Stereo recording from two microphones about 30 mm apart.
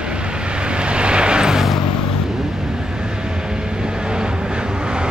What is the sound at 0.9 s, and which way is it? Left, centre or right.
Vehicle, right.